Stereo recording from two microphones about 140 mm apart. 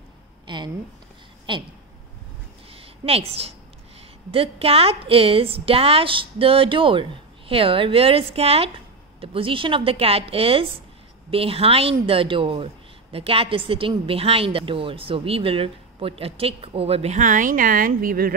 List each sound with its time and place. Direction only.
1.5 s a woman's voice: 35° right (ahead or behind)
2.7 s a sound: 45° right (ahead or behind)
4.3 s a woman's voice: 40° right (ahead or behind); by 18.3 s 90° right